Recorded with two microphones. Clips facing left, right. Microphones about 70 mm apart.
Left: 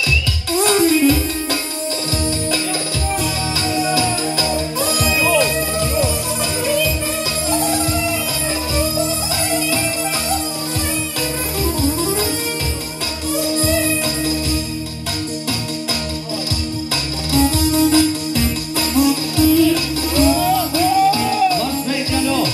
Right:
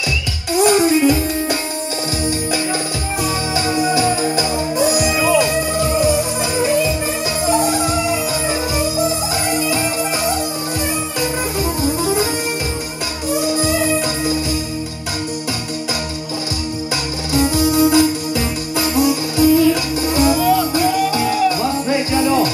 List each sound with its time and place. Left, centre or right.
0.5 s music: centre
3.7 s music: right
17.3 s music: centre